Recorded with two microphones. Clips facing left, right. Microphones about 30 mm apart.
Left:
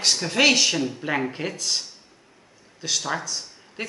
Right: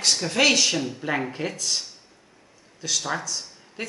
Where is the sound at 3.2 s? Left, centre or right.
Centre.